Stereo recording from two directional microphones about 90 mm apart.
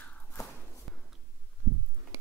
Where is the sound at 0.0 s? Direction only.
15° left (ahead or behind).